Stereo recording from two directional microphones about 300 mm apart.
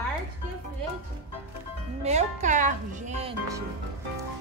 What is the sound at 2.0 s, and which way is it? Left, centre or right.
Speech, right.